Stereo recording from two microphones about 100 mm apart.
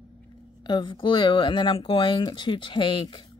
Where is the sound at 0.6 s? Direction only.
50° left (ahead or behind).